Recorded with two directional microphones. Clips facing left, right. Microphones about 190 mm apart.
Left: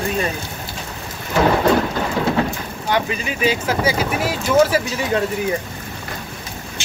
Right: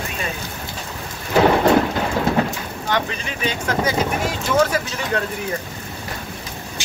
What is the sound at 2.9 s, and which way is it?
Speech, 10° left (ahead or behind).